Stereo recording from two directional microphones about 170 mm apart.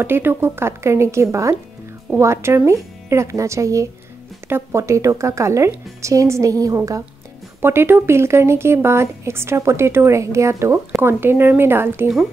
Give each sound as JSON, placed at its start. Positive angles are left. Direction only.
{"t": 0.0, "sound": "speech", "side_deg": -15}